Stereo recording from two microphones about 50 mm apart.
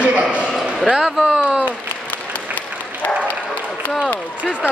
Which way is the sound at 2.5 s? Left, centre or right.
Left.